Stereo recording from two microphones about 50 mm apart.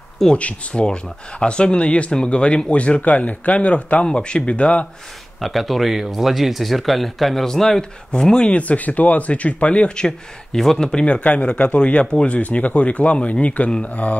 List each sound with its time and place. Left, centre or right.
0.3 s speech: left
0.8 s speech: centre
5.4 s speech: centre
11.1 s speech: left